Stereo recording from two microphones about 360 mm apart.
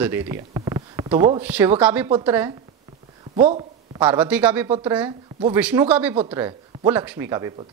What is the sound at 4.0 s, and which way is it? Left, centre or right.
Speech, centre.